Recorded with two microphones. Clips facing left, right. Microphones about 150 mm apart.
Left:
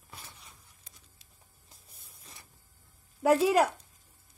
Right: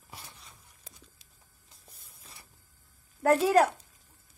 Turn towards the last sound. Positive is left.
turn(degrees=5)  # may be behind; listen again after turning